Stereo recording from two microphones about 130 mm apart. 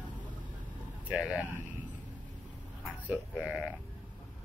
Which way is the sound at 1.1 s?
10° right (ahead or behind).